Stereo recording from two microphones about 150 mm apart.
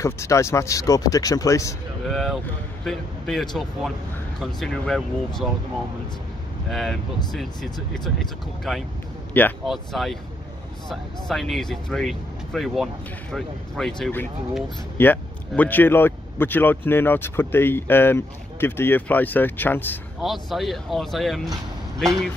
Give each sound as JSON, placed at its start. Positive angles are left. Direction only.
{"t": 0.0, "sound": "speech", "side_deg": 20}
{"t": 2.0, "sound": "speech", "side_deg": 0}
{"t": 6.7, "sound": "speech", "side_deg": 0}
{"t": 9.3, "sound": "speech", "side_deg": 10}
{"t": 9.7, "sound": "speech", "side_deg": 0}
{"t": 20.2, "sound": "speech", "side_deg": 0}